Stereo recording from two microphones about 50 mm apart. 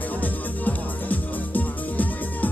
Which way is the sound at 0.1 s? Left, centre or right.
Left.